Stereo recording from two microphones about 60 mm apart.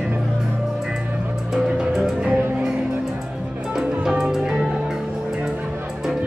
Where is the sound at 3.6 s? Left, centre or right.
Centre.